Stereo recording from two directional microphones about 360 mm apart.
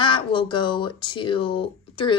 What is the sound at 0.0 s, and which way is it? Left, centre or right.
Speech, centre.